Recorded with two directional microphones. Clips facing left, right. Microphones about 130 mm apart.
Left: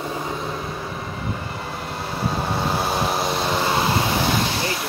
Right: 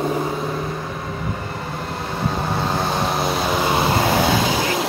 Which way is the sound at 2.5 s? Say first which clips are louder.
Right 1 dB; 5° left (ahead or behind).